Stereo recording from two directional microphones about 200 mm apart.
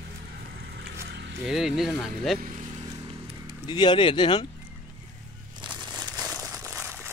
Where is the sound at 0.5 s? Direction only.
55° right (ahead or behind).